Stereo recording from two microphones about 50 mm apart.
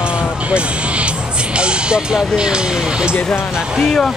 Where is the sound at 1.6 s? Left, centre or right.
Centre.